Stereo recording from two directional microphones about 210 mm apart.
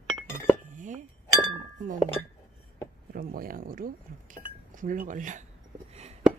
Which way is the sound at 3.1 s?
45° right (ahead or behind).